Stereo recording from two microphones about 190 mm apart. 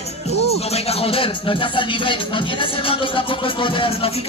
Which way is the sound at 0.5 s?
35° left (ahead or behind).